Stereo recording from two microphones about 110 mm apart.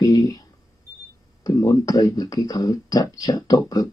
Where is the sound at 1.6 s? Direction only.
35° left (ahead or behind).